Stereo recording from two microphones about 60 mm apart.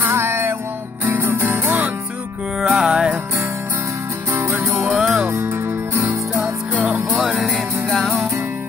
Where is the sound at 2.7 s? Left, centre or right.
Centre.